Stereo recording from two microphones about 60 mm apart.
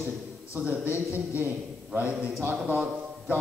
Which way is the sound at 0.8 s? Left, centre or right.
Right.